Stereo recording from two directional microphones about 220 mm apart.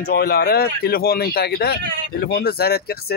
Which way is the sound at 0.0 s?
45° left (ahead or behind).